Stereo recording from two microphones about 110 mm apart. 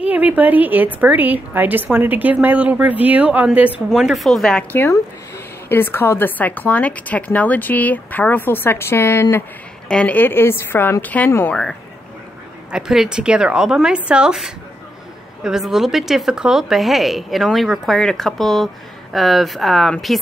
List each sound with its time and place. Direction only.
0.0 s a woman's voice: 15° right (ahead or behind)
3.9 s speech: centre (ahead or behind)
4.7 s a woman's voice: 20° left (ahead or behind)
9.8 s a woman's voice: 10° left (ahead or behind)
12.7 s a woman's voice: 5° right (ahead or behind)